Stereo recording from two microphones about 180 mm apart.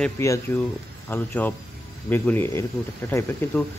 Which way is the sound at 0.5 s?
15° left (ahead or behind).